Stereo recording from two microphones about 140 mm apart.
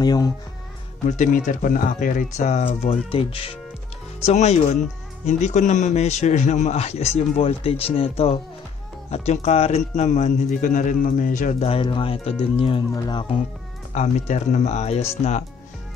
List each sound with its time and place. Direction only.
0.0 s speech: 30° left (ahead or behind)
1.0 s speech: 65° left (ahead or behind); by 3.5 s 40° left (ahead or behind)
4.2 s a man's voice: 50° left (ahead or behind); by 11.5 s 70° left (ahead or behind)
11.6 s speech: 40° left (ahead or behind)
12.9 s speech: 30° left (ahead or behind)
13.9 s a man's voice: 55° left (ahead or behind)